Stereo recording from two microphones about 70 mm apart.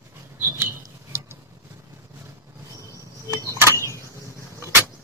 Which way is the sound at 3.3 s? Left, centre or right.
Right.